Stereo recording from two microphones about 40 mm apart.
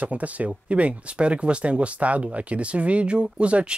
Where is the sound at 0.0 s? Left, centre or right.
Right.